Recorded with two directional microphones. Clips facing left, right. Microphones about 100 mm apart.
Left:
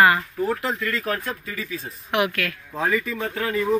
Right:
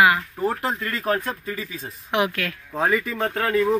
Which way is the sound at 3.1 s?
45° right (ahead or behind).